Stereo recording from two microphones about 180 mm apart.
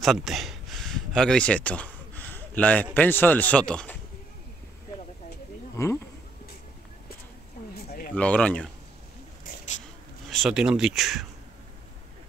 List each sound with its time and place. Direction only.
0.0 s speech: centre (ahead or behind)
5.8 s speech: 15° left (ahead or behind)
7.7 s a sound: 60° left (ahead or behind)
8.1 s speech: 5° left (ahead or behind)
9.4 s a sound: 45° left (ahead or behind)
10.2 s speech: centre (ahead or behind)